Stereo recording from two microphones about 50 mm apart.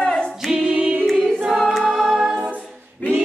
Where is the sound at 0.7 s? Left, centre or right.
Right.